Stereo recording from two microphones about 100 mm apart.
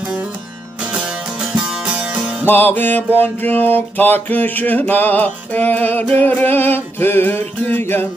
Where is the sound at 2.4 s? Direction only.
20° left (ahead or behind).